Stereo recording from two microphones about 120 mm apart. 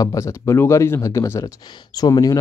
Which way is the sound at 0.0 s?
25° left (ahead or behind).